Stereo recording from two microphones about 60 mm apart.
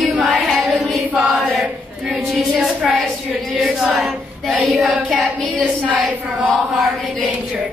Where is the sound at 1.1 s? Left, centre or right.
Right.